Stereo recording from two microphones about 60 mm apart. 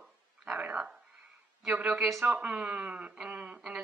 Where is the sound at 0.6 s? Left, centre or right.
Right.